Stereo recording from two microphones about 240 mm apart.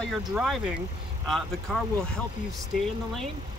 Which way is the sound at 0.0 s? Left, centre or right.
Centre.